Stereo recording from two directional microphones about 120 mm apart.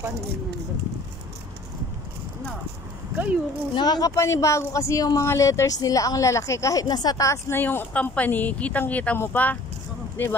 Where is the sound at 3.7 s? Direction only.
35° left (ahead or behind).